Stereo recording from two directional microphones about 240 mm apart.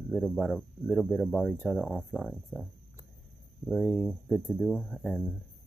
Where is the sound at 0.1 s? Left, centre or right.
Centre.